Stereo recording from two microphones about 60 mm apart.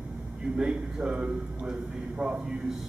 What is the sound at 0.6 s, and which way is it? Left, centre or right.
A man's voice, centre.